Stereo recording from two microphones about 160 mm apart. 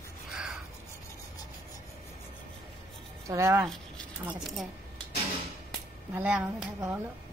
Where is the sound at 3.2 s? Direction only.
20° right (ahead or behind).